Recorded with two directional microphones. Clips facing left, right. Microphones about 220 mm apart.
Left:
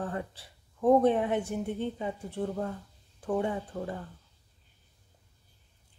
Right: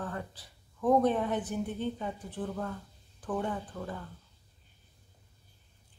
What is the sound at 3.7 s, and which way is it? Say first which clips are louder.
Speech: left 4 dB; 30° left (ahead or behind).